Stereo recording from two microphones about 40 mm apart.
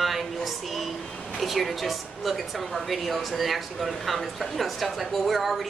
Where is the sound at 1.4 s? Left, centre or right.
Centre.